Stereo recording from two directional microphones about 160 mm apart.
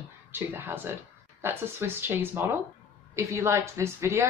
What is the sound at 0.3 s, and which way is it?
Speech, 15° right (ahead or behind).